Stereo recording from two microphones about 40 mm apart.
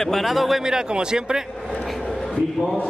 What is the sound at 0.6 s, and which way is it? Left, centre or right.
Speech, centre.